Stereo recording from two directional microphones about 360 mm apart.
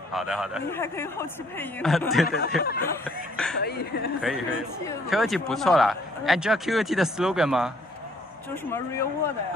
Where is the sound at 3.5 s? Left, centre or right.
Left.